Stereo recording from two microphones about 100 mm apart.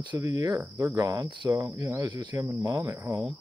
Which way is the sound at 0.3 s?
35° right (ahead or behind).